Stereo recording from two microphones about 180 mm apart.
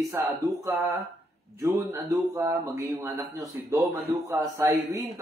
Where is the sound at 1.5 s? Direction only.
20° right (ahead or behind).